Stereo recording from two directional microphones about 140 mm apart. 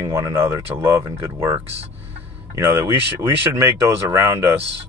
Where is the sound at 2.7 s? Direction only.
20° right (ahead or behind).